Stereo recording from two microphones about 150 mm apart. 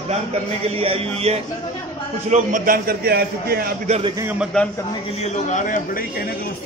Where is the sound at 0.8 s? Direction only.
40° right (ahead or behind).